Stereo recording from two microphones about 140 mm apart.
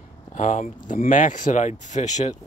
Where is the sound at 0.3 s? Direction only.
60° left (ahead or behind).